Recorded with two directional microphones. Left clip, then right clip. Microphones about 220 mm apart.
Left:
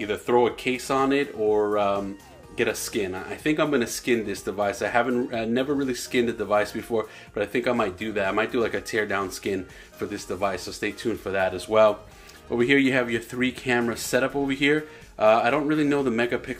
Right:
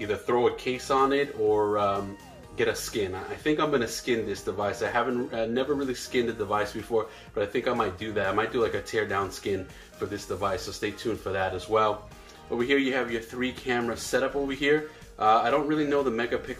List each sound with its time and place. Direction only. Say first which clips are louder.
0.0 s speech: left 3 dB; 45° left (ahead or behind)